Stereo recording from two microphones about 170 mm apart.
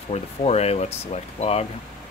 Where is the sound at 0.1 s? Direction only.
35° left (ahead or behind).